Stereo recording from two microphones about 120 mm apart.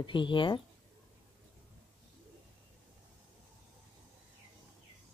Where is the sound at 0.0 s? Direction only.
40° left (ahead or behind).